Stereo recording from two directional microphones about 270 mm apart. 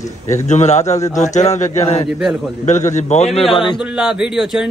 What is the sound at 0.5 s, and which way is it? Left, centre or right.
A man's voice, left.